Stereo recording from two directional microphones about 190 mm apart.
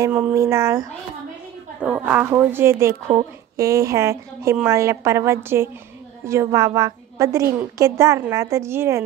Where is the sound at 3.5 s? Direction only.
15° right (ahead or behind).